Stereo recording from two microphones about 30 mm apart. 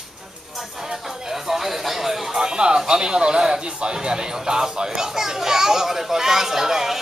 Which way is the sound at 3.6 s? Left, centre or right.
Right.